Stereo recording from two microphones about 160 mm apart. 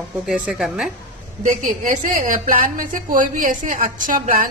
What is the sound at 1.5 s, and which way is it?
A woman's voice, 50° right (ahead or behind).